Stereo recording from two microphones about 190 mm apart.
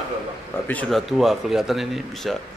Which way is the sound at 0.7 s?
5° left (ahead or behind).